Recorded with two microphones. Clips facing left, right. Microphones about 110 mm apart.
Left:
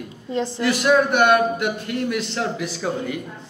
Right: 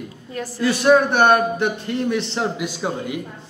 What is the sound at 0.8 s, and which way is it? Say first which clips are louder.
A man's voice: right 3 dB; 35° right (ahead or behind).